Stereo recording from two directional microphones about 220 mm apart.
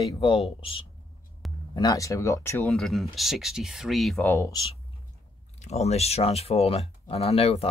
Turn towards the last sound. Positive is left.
turn(degrees=25)  # may be behind; listen again after turning